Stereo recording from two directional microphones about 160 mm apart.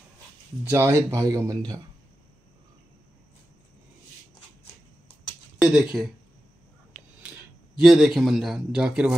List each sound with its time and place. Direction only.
0.7 s speech: 15° right (ahead or behind)
5.6 s speech: 5° right (ahead or behind)
7.2 s speech: 5° right (ahead or behind)